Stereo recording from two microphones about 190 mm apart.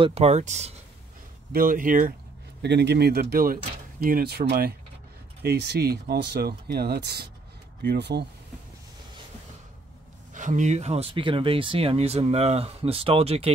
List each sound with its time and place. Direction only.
0.0 s speech: 35° right (ahead or behind)
1.5 s speech: 45° right (ahead or behind)
2.6 s speech: 60° right (ahead or behind)
10.3 s speech: 40° right (ahead or behind)